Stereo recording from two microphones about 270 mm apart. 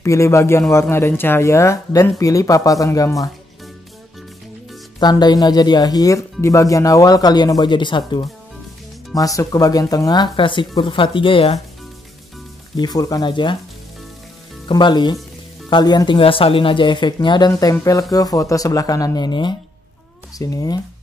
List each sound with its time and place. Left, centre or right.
0.0 s speech: centre
5.0 s speech: centre
12.7 s speech: centre
14.7 s speech: centre